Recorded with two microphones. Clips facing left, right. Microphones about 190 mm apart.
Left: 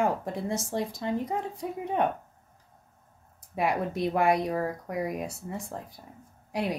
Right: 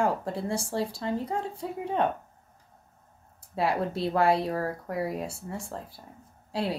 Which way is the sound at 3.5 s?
15° left (ahead or behind).